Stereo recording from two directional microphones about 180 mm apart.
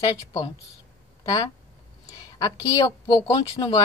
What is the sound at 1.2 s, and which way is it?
Speech, 20° left (ahead or behind).